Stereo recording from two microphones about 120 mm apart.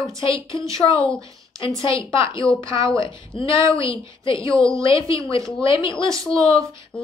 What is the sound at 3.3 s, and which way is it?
A woman's voice, 45° left (ahead or behind).